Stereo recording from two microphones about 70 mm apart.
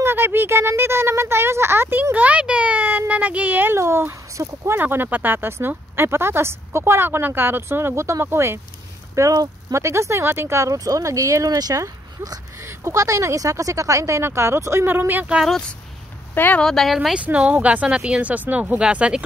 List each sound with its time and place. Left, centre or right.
0.0 s speech: right
3.7 s speech: right
4.7 s speech: right
10.7 s speech: right
12.5 s speech: right
16.6 s speech: centre
17.1 s speech: centre